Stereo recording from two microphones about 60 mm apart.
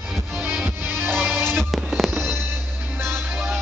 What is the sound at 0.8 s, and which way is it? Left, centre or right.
Music, right.